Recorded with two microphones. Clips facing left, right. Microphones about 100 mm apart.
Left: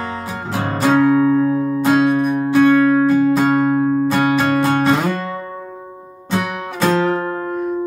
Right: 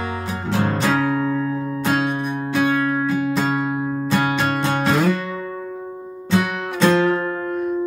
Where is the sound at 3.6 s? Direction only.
45° left (ahead or behind).